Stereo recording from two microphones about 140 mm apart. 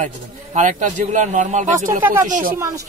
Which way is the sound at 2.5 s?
25° right (ahead or behind).